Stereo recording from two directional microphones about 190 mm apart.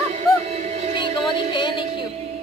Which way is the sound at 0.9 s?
25° left (ahead or behind).